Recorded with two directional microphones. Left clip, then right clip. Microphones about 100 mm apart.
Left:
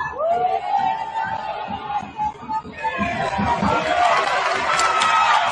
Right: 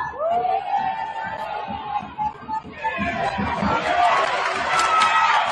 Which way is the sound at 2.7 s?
35° left (ahead or behind).